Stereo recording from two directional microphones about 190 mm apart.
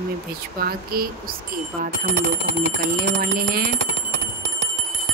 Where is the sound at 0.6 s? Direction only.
50° right (ahead or behind).